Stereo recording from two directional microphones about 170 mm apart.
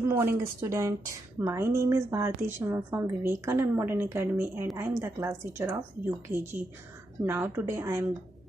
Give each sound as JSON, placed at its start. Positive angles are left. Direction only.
{"t": 0.0, "sound": "a woman's voice", "side_deg": -15}